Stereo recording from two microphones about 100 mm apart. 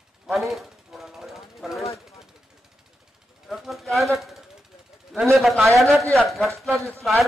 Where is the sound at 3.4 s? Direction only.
5° right (ahead or behind).